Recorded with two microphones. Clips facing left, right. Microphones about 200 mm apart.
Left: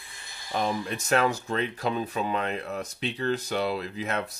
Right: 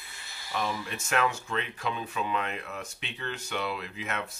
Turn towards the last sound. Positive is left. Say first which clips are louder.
# left 6 dB
turn(degrees=35)  # may be behind; listen again after turning